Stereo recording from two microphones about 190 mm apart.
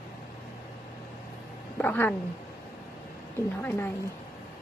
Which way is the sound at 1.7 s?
10° left (ahead or behind).